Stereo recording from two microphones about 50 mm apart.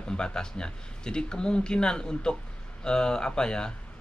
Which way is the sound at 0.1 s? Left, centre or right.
Centre.